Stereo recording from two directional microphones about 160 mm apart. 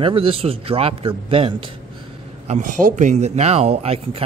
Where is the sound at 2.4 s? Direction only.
50° right (ahead or behind).